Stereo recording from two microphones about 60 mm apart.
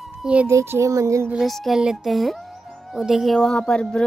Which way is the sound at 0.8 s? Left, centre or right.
Right.